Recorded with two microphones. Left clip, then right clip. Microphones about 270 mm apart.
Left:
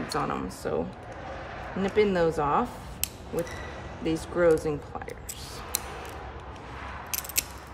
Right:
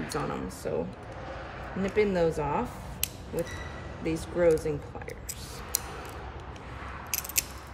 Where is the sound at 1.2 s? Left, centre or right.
Left.